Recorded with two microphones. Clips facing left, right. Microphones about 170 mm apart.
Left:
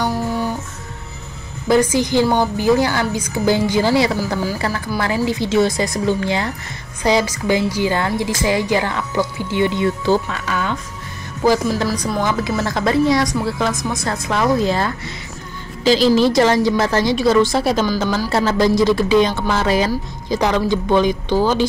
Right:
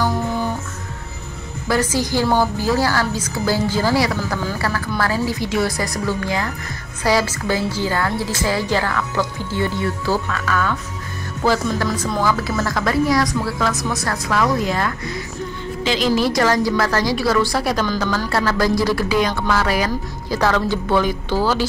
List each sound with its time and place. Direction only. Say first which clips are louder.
1.7 s a woman's voice: left 5 dB; 20° left (ahead or behind)